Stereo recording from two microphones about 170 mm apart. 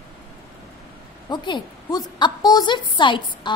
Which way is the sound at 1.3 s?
25° left (ahead or behind).